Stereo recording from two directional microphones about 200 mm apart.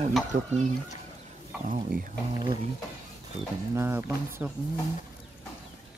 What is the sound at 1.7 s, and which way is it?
Speech, 40° right (ahead or behind).